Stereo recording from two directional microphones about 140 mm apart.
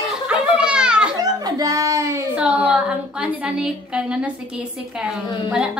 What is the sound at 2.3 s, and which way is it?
A woman's voice, 5° right (ahead or behind).